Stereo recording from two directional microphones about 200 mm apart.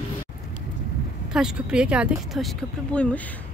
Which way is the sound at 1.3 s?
5° right (ahead or behind).